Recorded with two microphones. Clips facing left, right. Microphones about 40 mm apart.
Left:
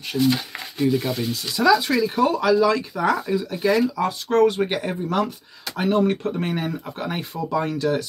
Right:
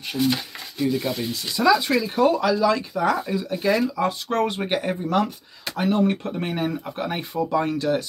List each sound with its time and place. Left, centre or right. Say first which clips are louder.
0.2 s speech: left 3 dB; centre
4.0 s speech: left 4 dB; centre
4.6 s speech: left 1 dB; centre